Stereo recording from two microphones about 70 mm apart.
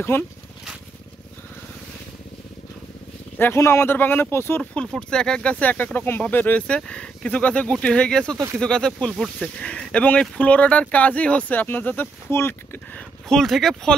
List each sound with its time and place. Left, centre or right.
0.1 s speech: left
3.3 s speech: left
4.9 s speech: centre; by 6.6 s left
6.7 s speech: centre; by 12.8 s left
12.9 s speech: centre